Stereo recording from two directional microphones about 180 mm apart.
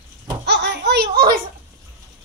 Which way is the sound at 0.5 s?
70° right (ahead or behind).